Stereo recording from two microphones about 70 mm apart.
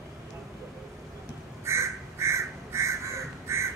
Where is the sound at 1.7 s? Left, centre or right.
Right.